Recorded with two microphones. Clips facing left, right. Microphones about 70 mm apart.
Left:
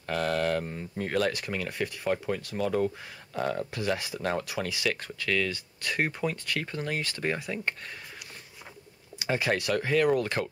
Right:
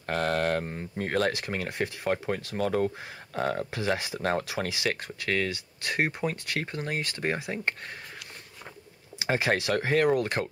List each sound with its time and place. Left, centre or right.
0.0 s a sound: right
0.7 s speech: right
1.4 s speech: right
3.5 s speech: right
4.2 s speech: right
5.9 s speech: right
9.3 s speech: right